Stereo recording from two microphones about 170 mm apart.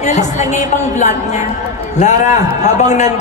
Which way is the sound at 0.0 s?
45° left (ahead or behind).